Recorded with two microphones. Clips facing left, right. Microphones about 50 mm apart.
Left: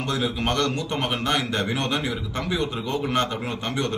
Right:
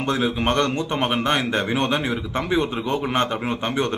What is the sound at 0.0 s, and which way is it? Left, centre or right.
A man's voice, right.